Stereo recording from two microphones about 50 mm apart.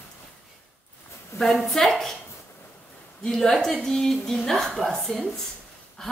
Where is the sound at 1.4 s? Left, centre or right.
Centre.